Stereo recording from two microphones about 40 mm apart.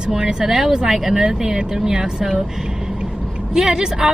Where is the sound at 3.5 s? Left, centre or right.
Centre.